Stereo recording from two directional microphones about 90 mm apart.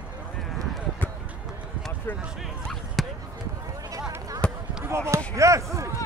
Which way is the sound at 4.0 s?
40° right (ahead or behind).